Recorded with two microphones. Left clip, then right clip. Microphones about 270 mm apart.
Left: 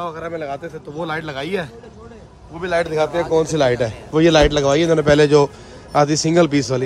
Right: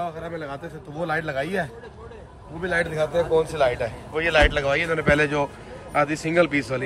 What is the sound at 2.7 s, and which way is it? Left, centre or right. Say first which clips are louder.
A man's voice: left 5 dB; left.